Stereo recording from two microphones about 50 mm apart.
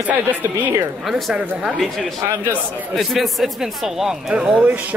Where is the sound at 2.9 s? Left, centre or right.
Centre.